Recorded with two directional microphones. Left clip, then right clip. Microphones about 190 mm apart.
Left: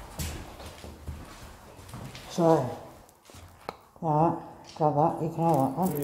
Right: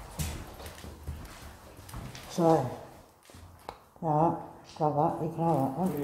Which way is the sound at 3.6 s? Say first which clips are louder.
Left 2 dB; 5° left (ahead or behind).